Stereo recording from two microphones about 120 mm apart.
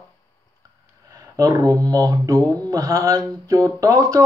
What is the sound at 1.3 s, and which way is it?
Speech, 25° right (ahead or behind).